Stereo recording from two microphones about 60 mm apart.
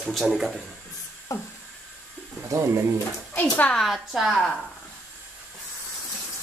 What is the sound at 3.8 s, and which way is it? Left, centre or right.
Speech, centre.